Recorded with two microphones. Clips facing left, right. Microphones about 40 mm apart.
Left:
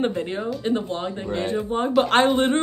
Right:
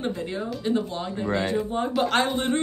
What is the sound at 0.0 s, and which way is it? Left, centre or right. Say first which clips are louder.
A man's voice: left 5 dB; left.